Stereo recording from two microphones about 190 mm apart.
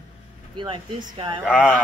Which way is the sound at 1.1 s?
25° right (ahead or behind).